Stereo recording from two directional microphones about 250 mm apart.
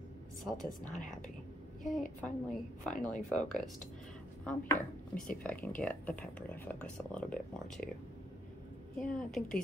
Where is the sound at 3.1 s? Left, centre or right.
Centre.